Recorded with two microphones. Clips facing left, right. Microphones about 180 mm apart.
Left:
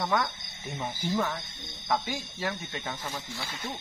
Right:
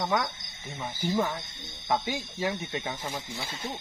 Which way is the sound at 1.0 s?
15° right (ahead or behind).